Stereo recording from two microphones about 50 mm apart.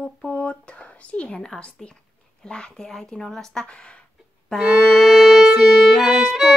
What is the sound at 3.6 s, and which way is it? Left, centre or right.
Female singing, left.